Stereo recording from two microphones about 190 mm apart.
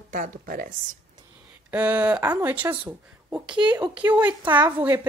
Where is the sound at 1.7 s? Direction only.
10° right (ahead or behind).